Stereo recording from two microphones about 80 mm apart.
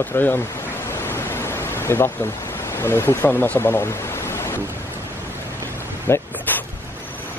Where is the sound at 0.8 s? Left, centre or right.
Left.